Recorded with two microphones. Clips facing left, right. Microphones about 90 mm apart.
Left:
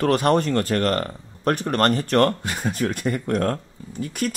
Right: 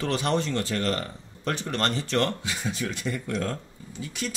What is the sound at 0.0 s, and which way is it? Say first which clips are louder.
Speech: left 7 dB; 50° left (ahead or behind).